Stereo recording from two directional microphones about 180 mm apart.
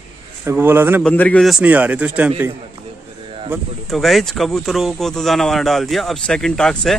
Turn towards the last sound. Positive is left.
turn(degrees=5)  # may be behind; listen again after turning